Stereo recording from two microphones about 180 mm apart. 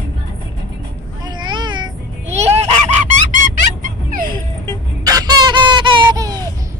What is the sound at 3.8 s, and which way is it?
Music, 45° right (ahead or behind).